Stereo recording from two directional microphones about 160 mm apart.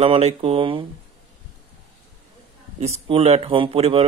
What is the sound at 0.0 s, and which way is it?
Speech, 40° right (ahead or behind).